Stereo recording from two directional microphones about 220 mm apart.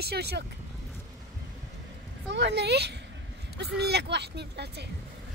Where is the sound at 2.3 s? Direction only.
50° right (ahead or behind).